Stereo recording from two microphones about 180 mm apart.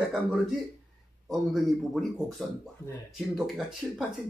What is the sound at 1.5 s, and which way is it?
Speech, centre (ahead or behind).